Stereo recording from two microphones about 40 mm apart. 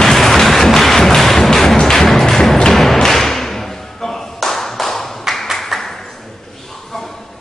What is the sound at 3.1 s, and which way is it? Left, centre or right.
Tap, centre.